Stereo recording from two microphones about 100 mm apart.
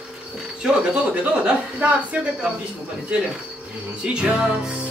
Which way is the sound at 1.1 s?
15° right (ahead or behind).